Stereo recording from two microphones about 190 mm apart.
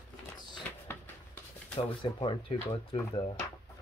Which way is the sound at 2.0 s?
25° left (ahead or behind).